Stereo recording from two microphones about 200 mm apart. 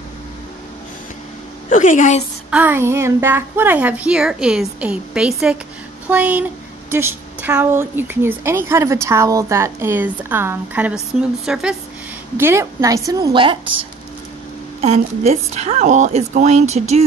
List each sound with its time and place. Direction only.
1.7 s a woman's voice: 40° left (ahead or behind)
2.5 s a woman's voice: 10° right (ahead or behind); by 17.0 s 35° right (ahead or behind)